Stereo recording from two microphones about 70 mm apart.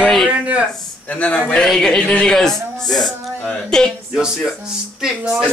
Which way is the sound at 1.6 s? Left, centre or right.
Centre.